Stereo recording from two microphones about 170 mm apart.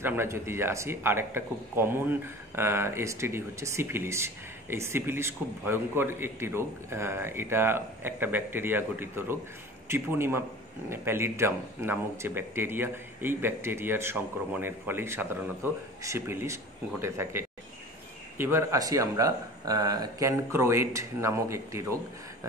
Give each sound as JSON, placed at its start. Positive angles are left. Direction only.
{"t": 0.0, "sound": "a man's voice", "side_deg": -15}